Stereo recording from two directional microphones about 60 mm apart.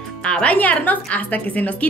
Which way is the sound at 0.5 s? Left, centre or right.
Left.